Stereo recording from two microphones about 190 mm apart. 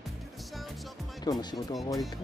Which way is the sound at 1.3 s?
20° left (ahead or behind).